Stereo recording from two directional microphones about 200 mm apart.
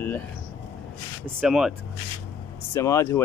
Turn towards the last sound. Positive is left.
turn(degrees=15)  # may be behind; listen again after turning